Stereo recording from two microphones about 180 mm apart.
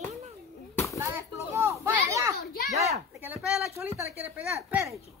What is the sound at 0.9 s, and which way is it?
Children playing, 15° right (ahead or behind).